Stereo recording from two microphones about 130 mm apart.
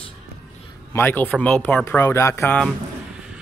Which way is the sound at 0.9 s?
15° left (ahead or behind).